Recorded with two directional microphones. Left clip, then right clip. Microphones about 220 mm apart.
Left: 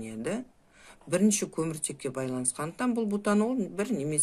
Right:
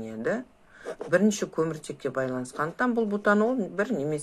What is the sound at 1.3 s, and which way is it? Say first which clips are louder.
Speech: right 3 dB; 25° left (ahead or behind).